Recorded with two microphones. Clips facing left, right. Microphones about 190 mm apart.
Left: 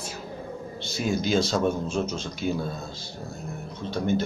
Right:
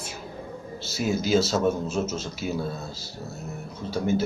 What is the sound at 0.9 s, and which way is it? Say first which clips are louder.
Speech: right 2 dB; 5° right (ahead or behind).